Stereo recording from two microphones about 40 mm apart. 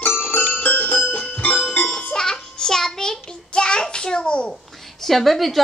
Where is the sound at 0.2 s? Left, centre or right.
Left.